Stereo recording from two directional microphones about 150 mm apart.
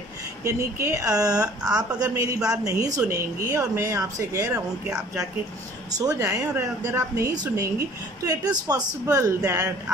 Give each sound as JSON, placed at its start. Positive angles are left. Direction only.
{"t": 0.4, "sound": "a woman's voice", "side_deg": -15}
{"t": 5.9, "sound": "a woman's voice", "side_deg": -20}